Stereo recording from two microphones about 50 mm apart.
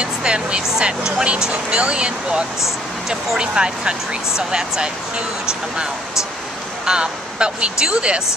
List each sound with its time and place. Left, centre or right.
0.0 s speech: centre
6.9 s speech: centre